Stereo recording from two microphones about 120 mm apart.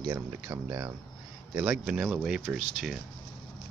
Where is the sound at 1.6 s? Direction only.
5° right (ahead or behind).